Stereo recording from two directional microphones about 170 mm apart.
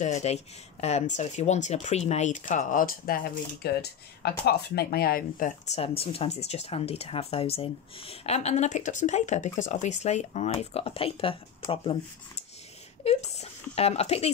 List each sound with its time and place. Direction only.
0.0 s speech: 40° left (ahead or behind)
3.6 s speech: 70° left (ahead or behind)
5.7 s speech: 35° left (ahead or behind)